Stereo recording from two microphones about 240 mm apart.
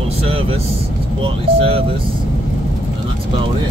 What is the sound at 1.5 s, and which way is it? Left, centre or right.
Speech, right.